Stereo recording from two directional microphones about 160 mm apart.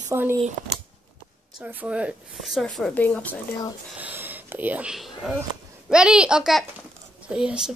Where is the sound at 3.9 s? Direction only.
10° right (ahead or behind).